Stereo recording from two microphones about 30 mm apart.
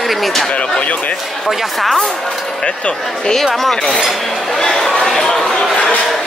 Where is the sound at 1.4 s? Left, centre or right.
Centre.